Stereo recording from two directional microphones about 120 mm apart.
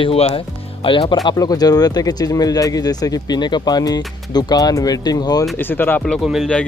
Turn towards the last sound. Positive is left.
turn(degrees=15)  # may be behind; listen again after turning